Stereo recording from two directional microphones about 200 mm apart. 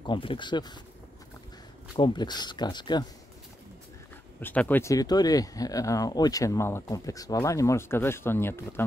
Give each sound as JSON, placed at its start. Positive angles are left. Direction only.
{"t": 0.0, "sound": "speech", "side_deg": 25}
{"t": 2.0, "sound": "speech", "side_deg": 20}
{"t": 4.4, "sound": "speech", "side_deg": 10}